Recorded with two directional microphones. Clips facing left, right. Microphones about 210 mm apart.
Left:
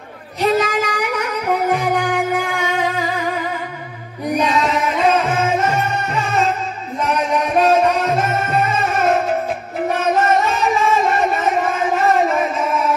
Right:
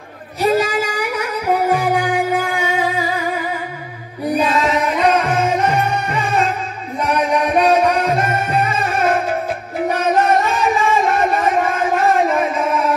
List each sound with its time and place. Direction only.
0.4 s a sound: 10° right (ahead or behind)
1.7 s music: 10° right (ahead or behind)
4.4 s music: centre (ahead or behind)
7.1 s music: 5° right (ahead or behind)